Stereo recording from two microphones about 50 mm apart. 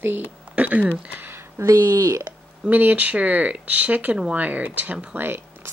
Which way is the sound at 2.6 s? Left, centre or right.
Right.